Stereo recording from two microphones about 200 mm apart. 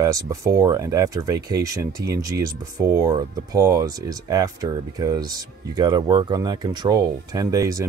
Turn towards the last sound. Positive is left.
turn(degrees=-15)  # may be behind; listen again after turning